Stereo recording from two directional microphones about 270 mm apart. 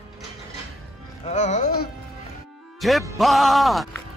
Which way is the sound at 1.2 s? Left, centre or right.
Left.